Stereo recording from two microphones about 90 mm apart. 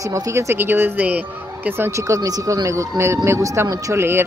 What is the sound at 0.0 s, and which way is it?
Speech, 35° right (ahead or behind).